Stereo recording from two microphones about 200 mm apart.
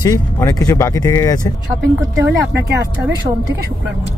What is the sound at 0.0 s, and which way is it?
Speech, 15° left (ahead or behind).